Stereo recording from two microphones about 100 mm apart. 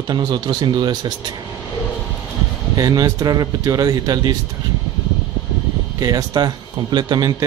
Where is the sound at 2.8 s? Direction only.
40° right (ahead or behind).